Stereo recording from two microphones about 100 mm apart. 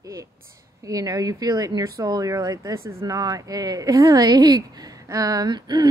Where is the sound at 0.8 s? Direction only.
35° right (ahead or behind).